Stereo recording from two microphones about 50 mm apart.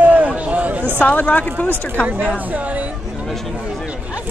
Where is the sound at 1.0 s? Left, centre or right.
Left.